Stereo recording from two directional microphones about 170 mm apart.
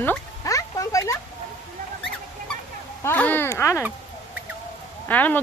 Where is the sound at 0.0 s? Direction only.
15° left (ahead or behind).